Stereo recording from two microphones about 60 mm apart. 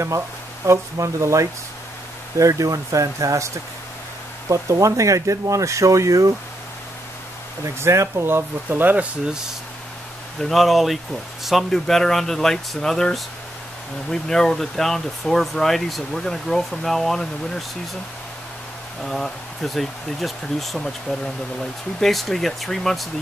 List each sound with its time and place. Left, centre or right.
0.7 s speech: right
7.6 s speech: right
8.3 s speech: right
10.4 s speech: centre
19.0 s speech: centre